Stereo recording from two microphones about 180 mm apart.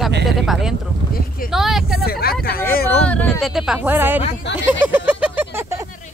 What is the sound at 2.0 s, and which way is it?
Speech, 60° left (ahead or behind).